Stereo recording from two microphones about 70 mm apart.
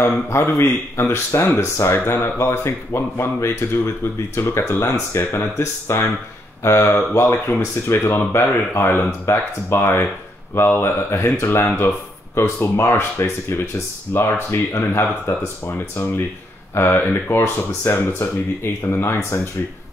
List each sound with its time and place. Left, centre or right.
0.0 s speech: left
16.7 s speech: left